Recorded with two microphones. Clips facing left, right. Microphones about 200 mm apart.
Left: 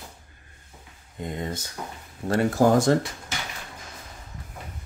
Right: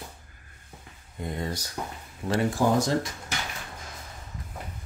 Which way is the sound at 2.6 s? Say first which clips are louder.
Left 5 dB; 45° left (ahead or behind).